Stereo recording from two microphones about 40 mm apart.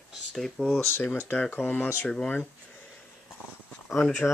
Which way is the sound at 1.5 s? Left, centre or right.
Left.